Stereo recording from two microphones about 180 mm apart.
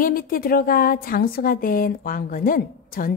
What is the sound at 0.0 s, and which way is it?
Speech, 50° left (ahead or behind).